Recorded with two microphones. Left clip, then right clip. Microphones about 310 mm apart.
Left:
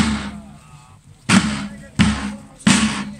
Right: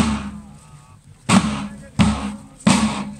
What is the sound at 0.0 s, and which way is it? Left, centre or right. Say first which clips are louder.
Music: left 1 dB; centre.